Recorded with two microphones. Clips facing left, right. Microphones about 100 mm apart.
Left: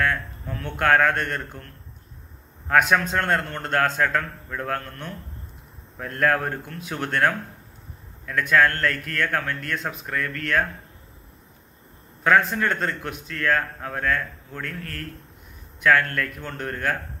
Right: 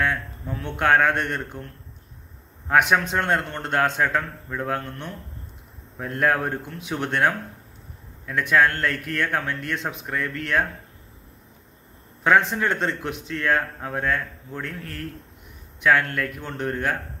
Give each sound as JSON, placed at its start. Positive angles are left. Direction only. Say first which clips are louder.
{"t": 0.0, "sound": "speech", "louder": "even", "side_deg": -15}
{"t": 2.7, "sound": "speech", "louder": "even", "side_deg": -15}
{"t": 12.2, "sound": "a man's voice", "louder": "even", "side_deg": -20}